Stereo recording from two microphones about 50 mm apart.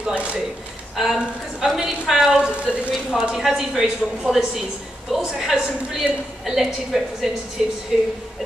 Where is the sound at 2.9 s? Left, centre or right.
Centre.